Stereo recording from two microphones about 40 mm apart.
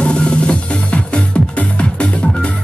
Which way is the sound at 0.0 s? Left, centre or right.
Left.